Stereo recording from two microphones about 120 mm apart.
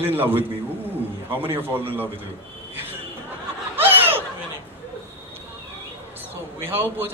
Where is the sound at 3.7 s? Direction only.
15° right (ahead or behind).